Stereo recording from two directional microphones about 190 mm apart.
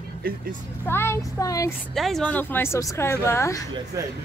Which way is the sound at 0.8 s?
10° left (ahead or behind).